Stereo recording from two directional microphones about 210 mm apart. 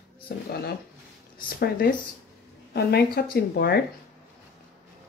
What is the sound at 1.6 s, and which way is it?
Speech, 45° left (ahead or behind).